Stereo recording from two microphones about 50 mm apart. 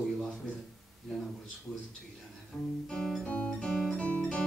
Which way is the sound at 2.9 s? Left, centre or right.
Centre.